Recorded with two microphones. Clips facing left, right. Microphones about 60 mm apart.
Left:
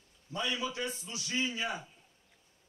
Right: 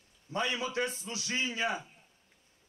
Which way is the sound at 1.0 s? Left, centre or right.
Right.